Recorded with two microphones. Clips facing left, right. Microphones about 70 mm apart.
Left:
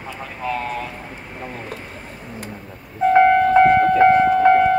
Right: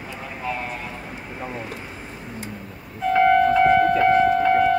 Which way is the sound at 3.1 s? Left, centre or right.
Left.